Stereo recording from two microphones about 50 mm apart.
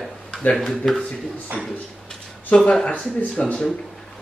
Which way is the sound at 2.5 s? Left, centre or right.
Centre.